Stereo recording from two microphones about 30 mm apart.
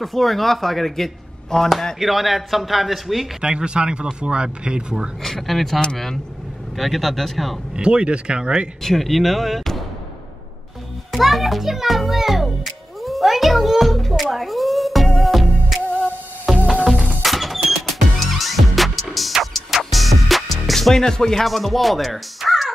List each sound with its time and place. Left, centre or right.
0.0 s speech: centre
1.5 s speech: centre
2.0 s a man's voice: centre
3.4 s speech: right
5.2 s a man's voice: centre
6.8 s a man's voice: centre
7.7 s speech: right
8.8 s speech: centre
11.1 s a child's voice: centre
13.0 s cat: centre
14.3 s music: centre
20.9 s speech: centre
21.5 s speech: centre